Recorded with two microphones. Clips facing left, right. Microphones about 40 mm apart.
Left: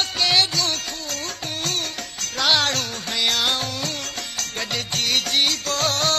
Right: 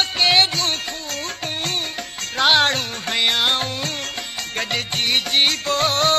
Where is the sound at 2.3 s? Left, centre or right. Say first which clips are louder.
Right 4 dB; right.